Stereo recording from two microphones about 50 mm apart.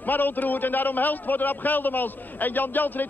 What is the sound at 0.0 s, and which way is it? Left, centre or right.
A man's voice, left.